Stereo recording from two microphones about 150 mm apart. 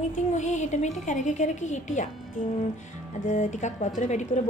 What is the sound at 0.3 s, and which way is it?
A woman's voice, 50° left (ahead or behind).